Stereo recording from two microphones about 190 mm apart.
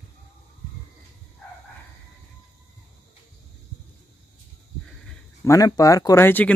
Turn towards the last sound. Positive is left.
turn(degrees=10)  # may be behind; listen again after turning